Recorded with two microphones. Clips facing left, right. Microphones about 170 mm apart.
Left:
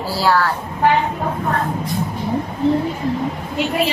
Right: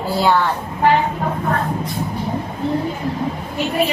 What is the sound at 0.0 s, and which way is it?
Speech, centre (ahead or behind).